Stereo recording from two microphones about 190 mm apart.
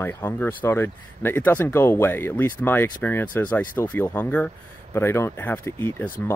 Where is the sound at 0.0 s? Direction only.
10° left (ahead or behind).